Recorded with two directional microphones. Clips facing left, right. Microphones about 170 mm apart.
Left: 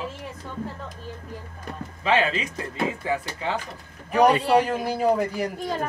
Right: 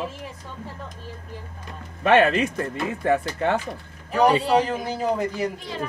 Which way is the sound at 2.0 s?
60° right (ahead or behind).